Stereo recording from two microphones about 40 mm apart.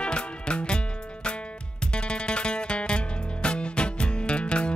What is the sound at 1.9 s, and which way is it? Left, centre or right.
Music, left.